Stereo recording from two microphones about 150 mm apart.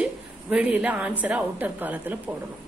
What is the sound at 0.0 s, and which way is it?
A woman's voice, 5° right (ahead or behind).